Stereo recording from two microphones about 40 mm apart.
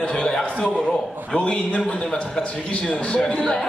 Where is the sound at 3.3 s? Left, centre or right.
Centre.